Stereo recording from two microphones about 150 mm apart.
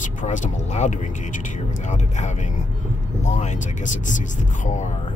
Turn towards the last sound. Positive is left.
turn(degrees=55)  # may be behind; listen again after turning